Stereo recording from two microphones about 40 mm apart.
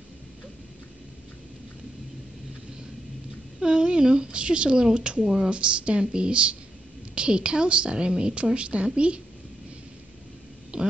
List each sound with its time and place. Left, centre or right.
3.6 s a woman's voice: right
5.2 s speech: centre
5.5 s a woman's voice: right
10.7 s a sound: right